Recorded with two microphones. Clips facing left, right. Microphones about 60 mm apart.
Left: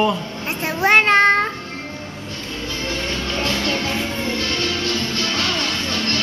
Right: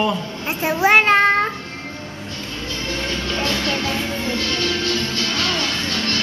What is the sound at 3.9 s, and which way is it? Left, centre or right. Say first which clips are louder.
Music: even; centre.